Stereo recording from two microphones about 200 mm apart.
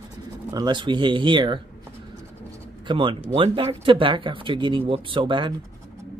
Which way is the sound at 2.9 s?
25° right (ahead or behind).